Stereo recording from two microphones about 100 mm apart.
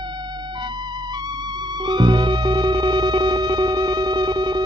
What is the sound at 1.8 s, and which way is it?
Music, 50° right (ahead or behind).